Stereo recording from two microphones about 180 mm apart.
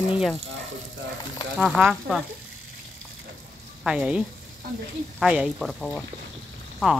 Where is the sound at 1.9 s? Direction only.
Centre (ahead or behind).